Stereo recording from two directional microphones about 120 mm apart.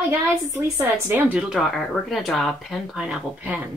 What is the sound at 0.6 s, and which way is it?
Speech, 20° right (ahead or behind).